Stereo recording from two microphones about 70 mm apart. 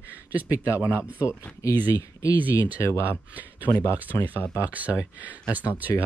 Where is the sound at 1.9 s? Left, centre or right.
Left.